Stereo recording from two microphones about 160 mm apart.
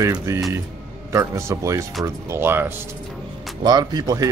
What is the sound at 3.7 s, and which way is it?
Speech, 25° right (ahead or behind).